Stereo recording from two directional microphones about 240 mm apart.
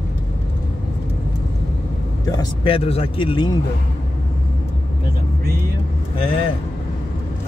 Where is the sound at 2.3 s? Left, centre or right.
Centre.